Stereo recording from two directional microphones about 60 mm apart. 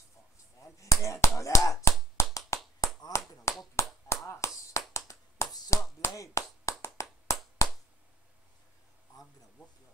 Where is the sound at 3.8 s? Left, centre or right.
Left.